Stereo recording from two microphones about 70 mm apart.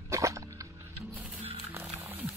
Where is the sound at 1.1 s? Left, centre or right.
Right.